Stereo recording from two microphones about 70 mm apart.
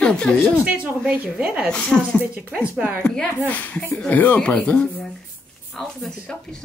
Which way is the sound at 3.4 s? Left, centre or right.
Left.